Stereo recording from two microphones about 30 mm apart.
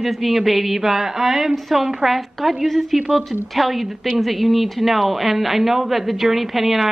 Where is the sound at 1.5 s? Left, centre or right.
Centre.